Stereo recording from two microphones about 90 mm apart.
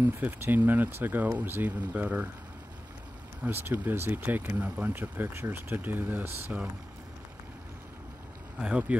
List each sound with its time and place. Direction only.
0.0 s speech: 20° right (ahead or behind)
3.4 s speech: 25° right (ahead or behind)
8.5 s speech: 15° right (ahead or behind)